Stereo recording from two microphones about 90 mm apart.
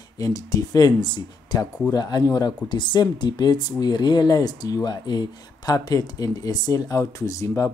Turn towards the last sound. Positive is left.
turn(degrees=40)  # may be behind; listen again after turning